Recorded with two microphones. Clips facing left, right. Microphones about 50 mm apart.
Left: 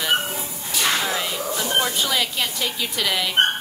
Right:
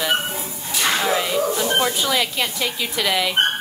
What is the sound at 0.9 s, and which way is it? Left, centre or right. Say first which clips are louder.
Speech: right 4 dB; centre.